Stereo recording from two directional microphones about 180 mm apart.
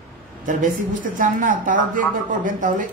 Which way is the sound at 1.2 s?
50° right (ahead or behind).